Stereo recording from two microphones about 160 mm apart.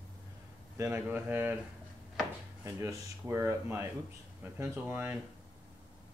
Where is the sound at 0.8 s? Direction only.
15° right (ahead or behind).